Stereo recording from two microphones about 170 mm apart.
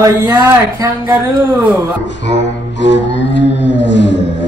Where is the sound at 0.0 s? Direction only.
20° right (ahead or behind).